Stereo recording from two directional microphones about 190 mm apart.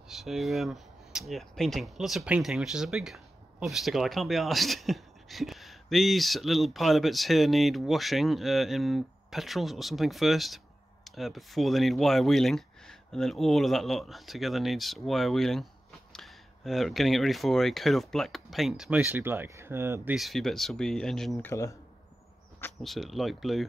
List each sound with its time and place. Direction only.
0.1 s speech: centre (ahead or behind)
20.2 s speech: centre (ahead or behind)
21.5 s speech: 15° left (ahead or behind)
22.6 s speech: centre (ahead or behind)